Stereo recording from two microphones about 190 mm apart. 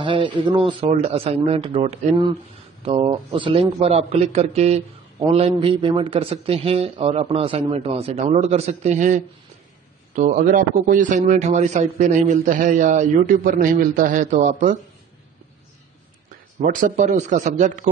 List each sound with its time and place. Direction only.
0.0 s a man's voice: 25° right (ahead or behind)
16.6 s a man's voice: 45° right (ahead or behind)